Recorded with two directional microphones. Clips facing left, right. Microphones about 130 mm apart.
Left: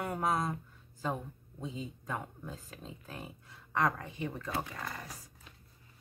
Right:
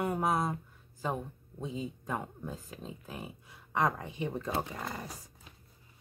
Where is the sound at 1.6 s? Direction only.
15° right (ahead or behind).